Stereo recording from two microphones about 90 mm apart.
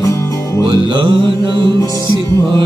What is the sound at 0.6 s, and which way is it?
Mantra, 70° right (ahead or behind).